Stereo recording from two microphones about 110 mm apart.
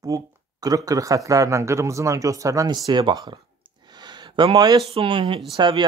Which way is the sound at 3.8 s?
40° right (ahead or behind).